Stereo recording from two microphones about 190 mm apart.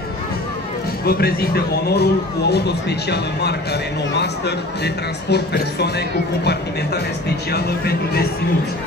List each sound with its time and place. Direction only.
1.0 s speech: 55° left (ahead or behind)
7.5 s speech: 55° left (ahead or behind)